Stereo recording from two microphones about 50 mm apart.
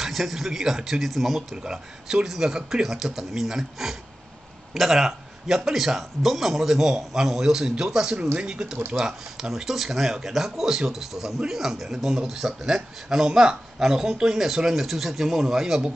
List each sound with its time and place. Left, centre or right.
0.0 s speech: centre